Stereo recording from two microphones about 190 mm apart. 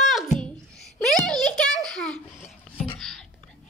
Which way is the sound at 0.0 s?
Centre (ahead or behind).